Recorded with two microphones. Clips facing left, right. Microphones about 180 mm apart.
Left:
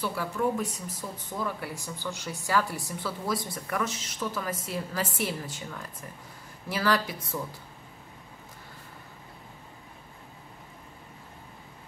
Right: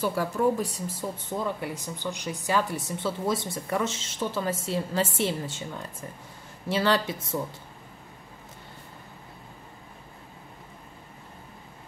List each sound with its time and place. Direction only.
0.0 s speech: 40° right (ahead or behind)